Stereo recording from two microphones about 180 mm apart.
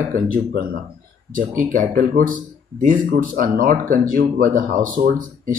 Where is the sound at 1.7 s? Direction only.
50° right (ahead or behind).